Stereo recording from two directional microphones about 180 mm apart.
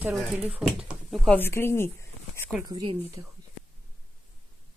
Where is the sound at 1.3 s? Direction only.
15° left (ahead or behind).